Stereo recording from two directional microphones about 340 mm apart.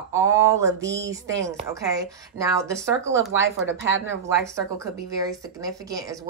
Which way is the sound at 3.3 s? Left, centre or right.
Right.